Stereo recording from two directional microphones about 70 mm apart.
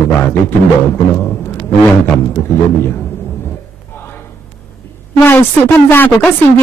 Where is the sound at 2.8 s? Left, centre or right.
Left.